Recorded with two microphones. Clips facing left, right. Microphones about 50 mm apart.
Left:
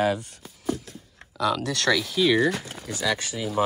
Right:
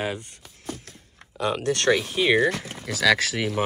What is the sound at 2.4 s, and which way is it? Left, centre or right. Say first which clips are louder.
Speech: right 1 dB; right.